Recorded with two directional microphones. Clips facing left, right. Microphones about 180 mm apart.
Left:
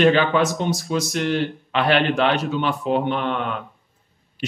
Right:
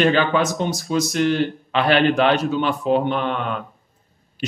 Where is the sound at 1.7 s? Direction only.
40° right (ahead or behind).